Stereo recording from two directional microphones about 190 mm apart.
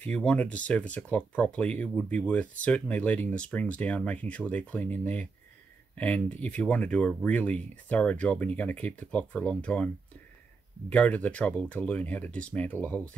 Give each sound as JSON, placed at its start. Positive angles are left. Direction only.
{"t": 0.0, "sound": "speech", "side_deg": 5}
{"t": 10.9, "sound": "speech", "side_deg": 5}